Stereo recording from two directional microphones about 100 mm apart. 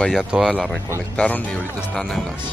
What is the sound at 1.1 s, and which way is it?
Speech, 15° left (ahead or behind).